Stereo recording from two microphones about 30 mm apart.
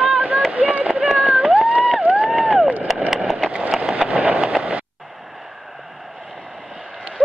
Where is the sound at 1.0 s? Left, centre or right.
Centre.